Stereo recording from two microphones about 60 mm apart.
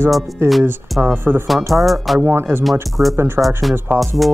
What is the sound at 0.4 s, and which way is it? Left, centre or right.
Speech, right.